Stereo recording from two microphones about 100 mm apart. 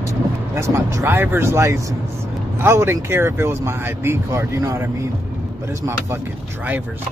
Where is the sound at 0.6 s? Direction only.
30° right (ahead or behind).